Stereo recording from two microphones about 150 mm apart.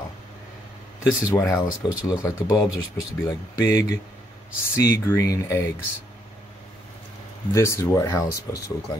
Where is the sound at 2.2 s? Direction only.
25° left (ahead or behind).